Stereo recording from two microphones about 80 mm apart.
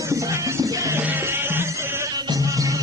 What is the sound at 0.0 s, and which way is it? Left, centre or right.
Music, right.